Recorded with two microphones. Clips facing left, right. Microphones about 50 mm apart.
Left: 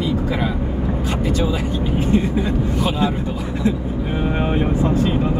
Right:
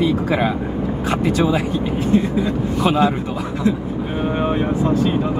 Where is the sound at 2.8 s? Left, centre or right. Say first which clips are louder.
Right 6 dB; right.